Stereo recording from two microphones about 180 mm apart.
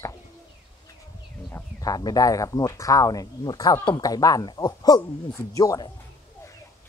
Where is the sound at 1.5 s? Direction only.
20° left (ahead or behind).